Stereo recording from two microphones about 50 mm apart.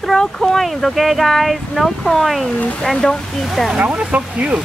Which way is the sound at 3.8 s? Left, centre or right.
Right.